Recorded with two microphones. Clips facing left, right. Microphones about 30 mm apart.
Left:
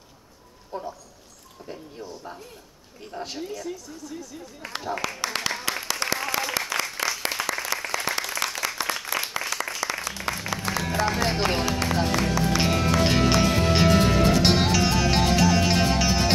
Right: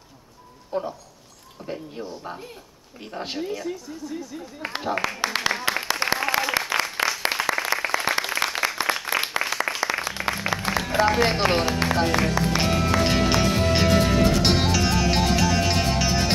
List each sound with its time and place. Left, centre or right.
0.7 s speech: right
4.7 s applause: centre
11.8 s speech: right
12.5 s music: centre